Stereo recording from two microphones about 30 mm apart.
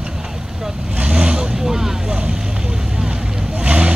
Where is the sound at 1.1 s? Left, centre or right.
Right.